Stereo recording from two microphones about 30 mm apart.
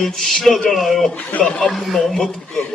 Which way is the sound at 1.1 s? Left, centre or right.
Left.